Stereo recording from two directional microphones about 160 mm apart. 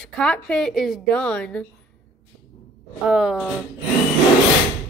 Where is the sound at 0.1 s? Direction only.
5° left (ahead or behind).